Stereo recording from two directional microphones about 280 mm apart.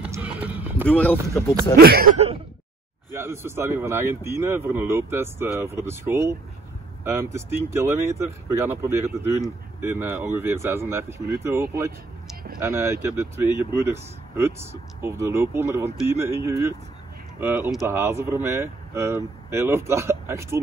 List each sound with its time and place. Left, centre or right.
0.0 s run: centre
0.8 s speech: centre
1.8 s speech: right
3.1 s speech: centre
12.6 s speech: centre